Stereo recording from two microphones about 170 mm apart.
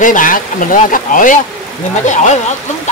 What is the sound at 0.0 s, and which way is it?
Speech, 50° left (ahead or behind).